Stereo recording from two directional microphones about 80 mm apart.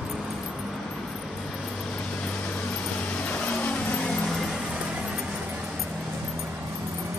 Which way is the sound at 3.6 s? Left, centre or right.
Centre.